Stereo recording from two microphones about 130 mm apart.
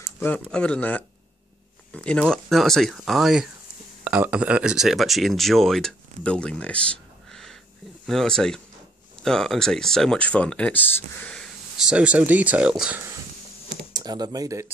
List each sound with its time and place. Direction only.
0.2 s speech: 10° left (ahead or behind)
11.9 s speech: 10° right (ahead or behind)
13.9 s speech: 30° right (ahead or behind)